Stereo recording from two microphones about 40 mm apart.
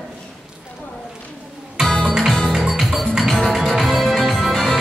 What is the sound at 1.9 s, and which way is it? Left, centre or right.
Music, centre.